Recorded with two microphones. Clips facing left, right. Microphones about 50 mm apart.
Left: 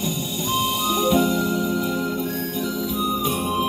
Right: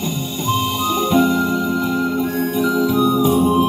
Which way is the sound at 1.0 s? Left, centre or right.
Right.